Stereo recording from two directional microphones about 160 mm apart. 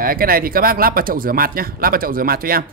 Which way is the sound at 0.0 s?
65° right (ahead or behind).